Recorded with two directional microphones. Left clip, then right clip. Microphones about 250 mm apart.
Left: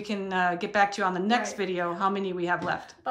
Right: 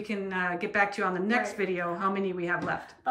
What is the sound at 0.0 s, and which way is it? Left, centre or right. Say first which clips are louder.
A woman's voice: left 4 dB; centre.